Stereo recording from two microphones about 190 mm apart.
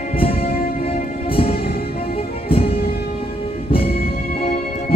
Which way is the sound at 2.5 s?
30° left (ahead or behind).